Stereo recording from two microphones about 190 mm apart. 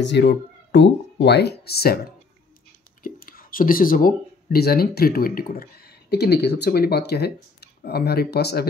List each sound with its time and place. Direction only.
0.0 s speech: 60° left (ahead or behind)
3.0 s speech: 50° left (ahead or behind)